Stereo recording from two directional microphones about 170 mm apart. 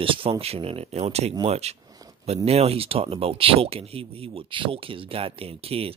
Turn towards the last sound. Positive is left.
turn(degrees=-35)  # may be behind; listen again after turning